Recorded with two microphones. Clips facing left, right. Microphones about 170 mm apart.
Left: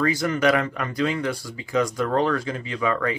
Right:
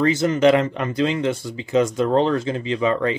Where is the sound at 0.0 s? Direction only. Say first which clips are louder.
Right 5 dB; 25° right (ahead or behind).